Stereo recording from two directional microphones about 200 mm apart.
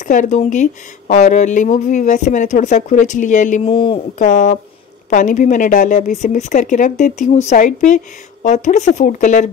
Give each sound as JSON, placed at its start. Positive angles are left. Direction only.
{"t": 0.0, "sound": "speech", "side_deg": 40}